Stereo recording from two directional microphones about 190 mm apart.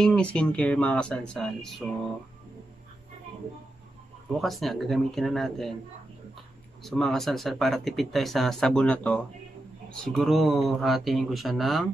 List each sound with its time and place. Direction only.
0.0 s speech: 5° left (ahead or behind)
4.3 s speech: centre (ahead or behind)
6.8 s speech: centre (ahead or behind)